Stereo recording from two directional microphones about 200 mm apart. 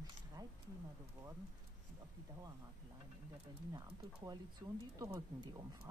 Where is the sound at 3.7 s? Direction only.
20° right (ahead or behind).